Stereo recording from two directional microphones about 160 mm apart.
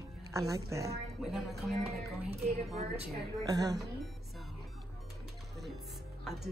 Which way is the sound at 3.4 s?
25° right (ahead or behind).